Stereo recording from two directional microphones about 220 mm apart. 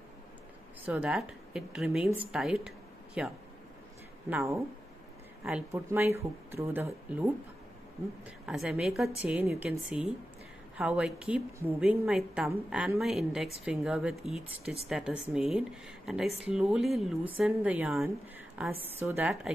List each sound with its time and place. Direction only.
0.8 s a woman's voice: 5° right (ahead or behind)
5.7 s speech: 10° right (ahead or behind)
8.5 s a woman's voice: 5° right (ahead or behind)
16.3 s speech: 25° left (ahead or behind)
16.5 s a woman's voice: centre (ahead or behind)